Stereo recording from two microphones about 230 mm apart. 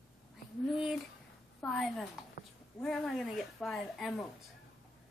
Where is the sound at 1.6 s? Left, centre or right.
Centre.